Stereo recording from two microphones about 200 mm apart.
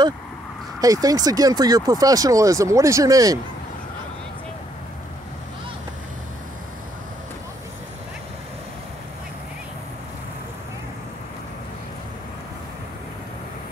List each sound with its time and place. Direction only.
0.7 s speech: 15° right (ahead or behind)